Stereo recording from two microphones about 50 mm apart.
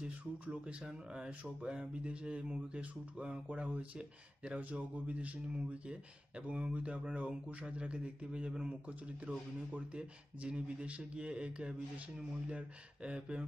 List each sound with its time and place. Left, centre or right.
0.0 s speech: right